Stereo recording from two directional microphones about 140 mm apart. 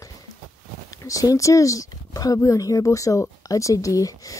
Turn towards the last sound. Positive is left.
turn(degrees=25)  # may be behind; listen again after turning